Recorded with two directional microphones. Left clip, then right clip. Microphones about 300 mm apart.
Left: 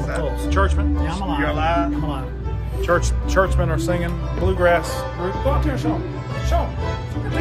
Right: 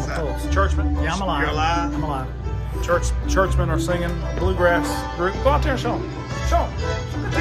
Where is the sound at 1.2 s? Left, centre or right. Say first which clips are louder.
Left 1 dB; centre.